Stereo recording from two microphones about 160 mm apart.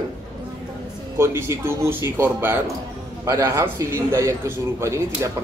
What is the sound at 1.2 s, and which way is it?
A man's voice, 15° right (ahead or behind).